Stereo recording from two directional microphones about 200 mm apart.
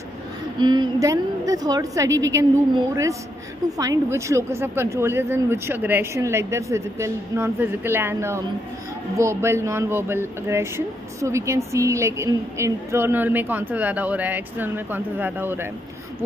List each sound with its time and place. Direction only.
0.6 s speech: 20° right (ahead or behind)